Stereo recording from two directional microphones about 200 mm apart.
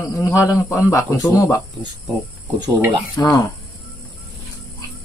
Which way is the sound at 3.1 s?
20° left (ahead or behind).